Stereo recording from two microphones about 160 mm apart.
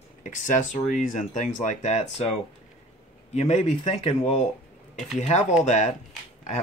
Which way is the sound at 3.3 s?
45° left (ahead or behind).